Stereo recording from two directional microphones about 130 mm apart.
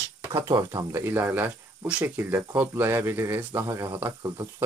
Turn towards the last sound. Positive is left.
turn(degrees=-25)  # may be behind; listen again after turning